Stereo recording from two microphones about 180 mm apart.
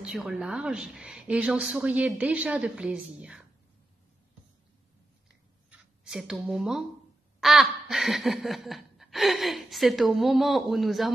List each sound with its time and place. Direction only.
0.0 s a woman's voice: 5° right (ahead or behind)
5.7 s speech: 5° right (ahead or behind)
7.3 s quack: centre (ahead or behind)
7.9 s a woman's voice: centre (ahead or behind)